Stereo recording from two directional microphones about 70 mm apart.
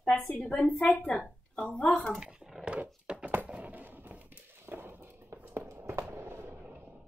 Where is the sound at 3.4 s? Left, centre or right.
Centre.